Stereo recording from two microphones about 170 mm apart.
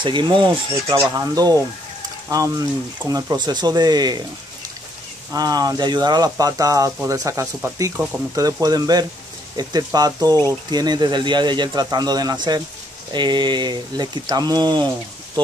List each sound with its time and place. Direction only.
0.0 s speech: 30° right (ahead or behind)
5.3 s speech: 25° right (ahead or behind)